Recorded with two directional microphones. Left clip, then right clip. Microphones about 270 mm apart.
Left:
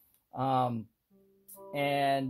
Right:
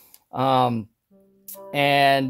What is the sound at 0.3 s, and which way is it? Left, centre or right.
Speech, right.